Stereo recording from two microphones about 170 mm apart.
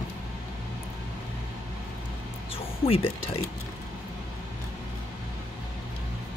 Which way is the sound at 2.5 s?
35° left (ahead or behind).